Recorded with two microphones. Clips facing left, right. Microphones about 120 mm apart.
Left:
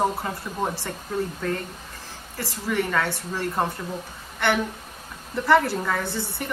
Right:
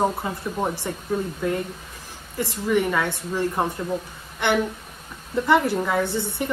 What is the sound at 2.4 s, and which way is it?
A woman's voice, 20° right (ahead or behind).